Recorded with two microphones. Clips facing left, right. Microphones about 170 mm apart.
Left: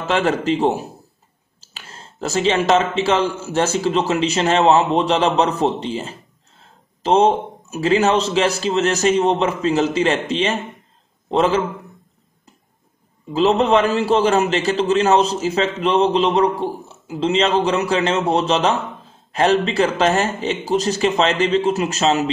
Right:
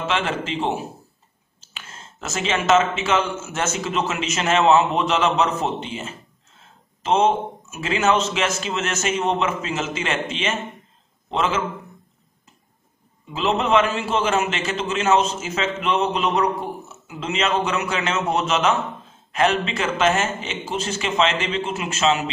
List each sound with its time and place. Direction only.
0.0 s a man's voice: 40° left (ahead or behind)
1.6 s clicking: 35° left (ahead or behind)
3.0 s a man's voice: 35° left (ahead or behind)
13.3 s a man's voice: 35° left (ahead or behind)